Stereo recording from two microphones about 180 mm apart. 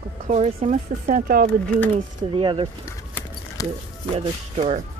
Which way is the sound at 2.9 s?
15° left (ahead or behind).